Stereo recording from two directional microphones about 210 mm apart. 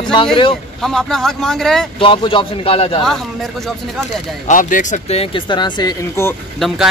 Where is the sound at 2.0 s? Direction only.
25° left (ahead or behind).